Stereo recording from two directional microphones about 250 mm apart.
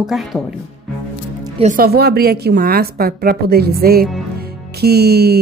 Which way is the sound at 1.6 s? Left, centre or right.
Right.